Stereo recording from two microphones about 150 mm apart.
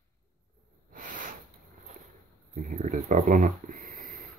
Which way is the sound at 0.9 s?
65° right (ahead or behind).